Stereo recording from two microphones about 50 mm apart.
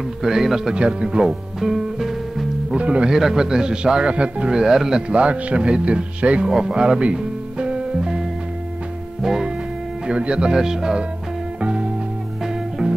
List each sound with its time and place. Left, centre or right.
0.2 s a man's voice: centre
2.7 s speech: right
3.1 s a man's voice: centre
5.1 s speech: right
6.6 s music: centre
10.0 s a man's voice: centre
11.6 s music: centre